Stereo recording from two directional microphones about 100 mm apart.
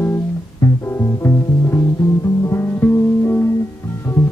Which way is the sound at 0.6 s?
20° left (ahead or behind).